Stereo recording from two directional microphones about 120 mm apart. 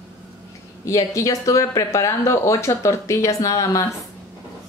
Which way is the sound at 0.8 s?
25° left (ahead or behind).